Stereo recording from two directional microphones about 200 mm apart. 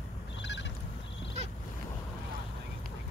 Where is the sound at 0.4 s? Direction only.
60° left (ahead or behind).